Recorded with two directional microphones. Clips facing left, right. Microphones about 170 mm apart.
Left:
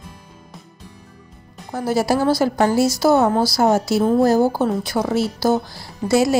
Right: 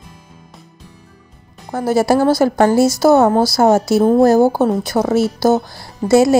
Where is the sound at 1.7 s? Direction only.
50° right (ahead or behind).